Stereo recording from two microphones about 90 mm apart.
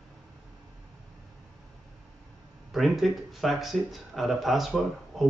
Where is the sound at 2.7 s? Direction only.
Centre (ahead or behind).